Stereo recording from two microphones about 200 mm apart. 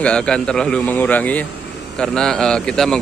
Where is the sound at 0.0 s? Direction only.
5° left (ahead or behind).